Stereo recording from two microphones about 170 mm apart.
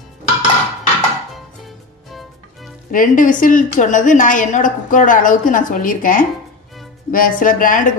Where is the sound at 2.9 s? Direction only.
55° left (ahead or behind).